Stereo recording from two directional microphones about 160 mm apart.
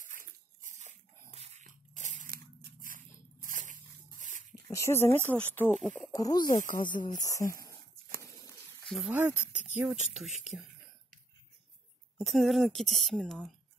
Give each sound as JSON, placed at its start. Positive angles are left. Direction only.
{"t": 0.0, "sound": "a sound", "side_deg": -55}
{"t": 1.3, "sound": "crunch", "side_deg": -45}
{"t": 3.3, "sound": "a sound", "side_deg": -55}
{"t": 4.6, "sound": "speech", "side_deg": 20}
{"t": 6.1, "sound": "speech", "side_deg": 20}
{"t": 6.4, "sound": "speech", "side_deg": 55}
{"t": 6.9, "sound": "speech", "side_deg": 25}
{"t": 8.2, "sound": "bird", "side_deg": 20}
{"t": 8.8, "sound": "a sound", "side_deg": 0}
{"t": 9.1, "sound": "a woman's voice", "side_deg": -10}
{"t": 12.2, "sound": "a woman's voice", "side_deg": 0}